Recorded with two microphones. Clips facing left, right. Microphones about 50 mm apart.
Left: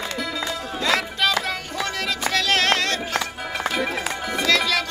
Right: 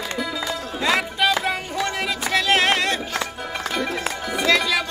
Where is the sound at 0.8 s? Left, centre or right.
Centre.